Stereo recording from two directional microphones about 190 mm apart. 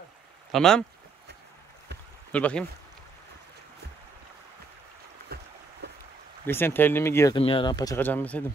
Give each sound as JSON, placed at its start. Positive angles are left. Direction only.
{"t": 0.5, "sound": "speech", "side_deg": 5}
{"t": 2.3, "sound": "speech", "side_deg": 5}
{"t": 5.3, "sound": "boat", "side_deg": -60}
{"t": 5.8, "sound": "a sound", "side_deg": -60}
{"t": 6.4, "sound": "speech", "side_deg": 10}
{"t": 7.3, "sound": "speech", "side_deg": 25}